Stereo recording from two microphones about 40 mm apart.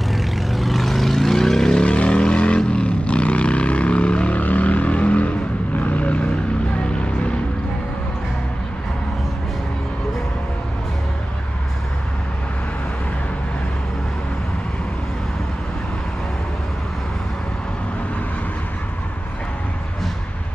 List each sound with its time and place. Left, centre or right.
0.1 s vehicle: centre
1.9 s vehicle: left
4.4 s vehicle: left